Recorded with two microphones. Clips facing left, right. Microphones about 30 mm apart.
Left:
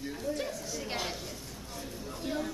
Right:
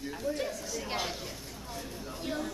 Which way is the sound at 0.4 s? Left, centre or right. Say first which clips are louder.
Right 1 dB; centre.